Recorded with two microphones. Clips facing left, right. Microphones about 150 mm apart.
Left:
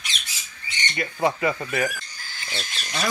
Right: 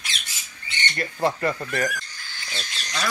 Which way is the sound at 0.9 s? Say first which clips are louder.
Left 1 dB; 5° left (ahead or behind).